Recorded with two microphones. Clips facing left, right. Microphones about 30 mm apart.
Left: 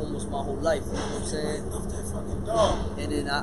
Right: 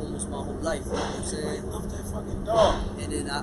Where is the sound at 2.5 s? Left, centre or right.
Centre.